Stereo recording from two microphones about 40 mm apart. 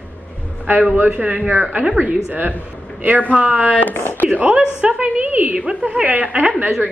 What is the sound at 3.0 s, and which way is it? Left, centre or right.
A woman's voice, right.